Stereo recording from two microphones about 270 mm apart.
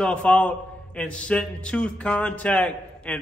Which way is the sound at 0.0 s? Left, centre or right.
Centre.